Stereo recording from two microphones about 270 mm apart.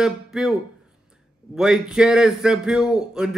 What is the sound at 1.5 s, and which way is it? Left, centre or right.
A man's voice, centre.